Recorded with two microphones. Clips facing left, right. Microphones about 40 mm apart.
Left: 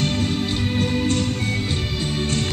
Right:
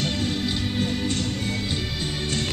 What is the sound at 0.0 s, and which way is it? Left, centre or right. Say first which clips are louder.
Music: left 3 dB; centre.